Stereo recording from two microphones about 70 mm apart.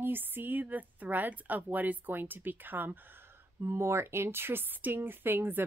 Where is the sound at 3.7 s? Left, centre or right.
Right.